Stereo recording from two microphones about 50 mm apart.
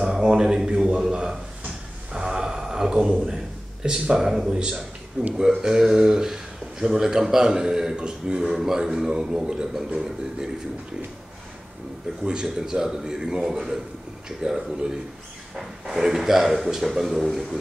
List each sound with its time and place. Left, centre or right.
0.0 s speech: centre
2.1 s a sound: centre
3.8 s speech: centre
5.6 s speech: centre
8.5 s speech: centre
12.2 s speech: centre